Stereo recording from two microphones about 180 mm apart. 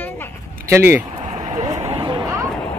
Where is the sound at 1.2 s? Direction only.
45° right (ahead or behind); by 2.4 s 20° right (ahead or behind).